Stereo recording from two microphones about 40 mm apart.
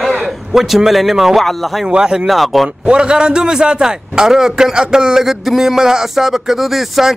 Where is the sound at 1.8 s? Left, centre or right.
Right.